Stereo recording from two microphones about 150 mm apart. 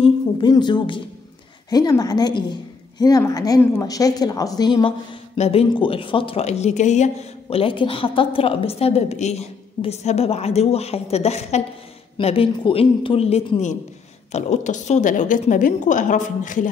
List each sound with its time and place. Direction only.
0.0 s a woman's voice: 30° left (ahead or behind); by 16.6 s 55° left (ahead or behind)